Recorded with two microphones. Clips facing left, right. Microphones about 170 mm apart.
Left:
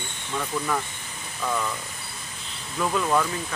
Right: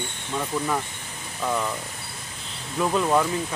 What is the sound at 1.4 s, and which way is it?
Speech, 15° right (ahead or behind).